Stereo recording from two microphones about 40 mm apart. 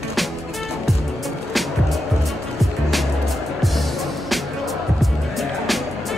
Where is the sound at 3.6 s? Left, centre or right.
Centre.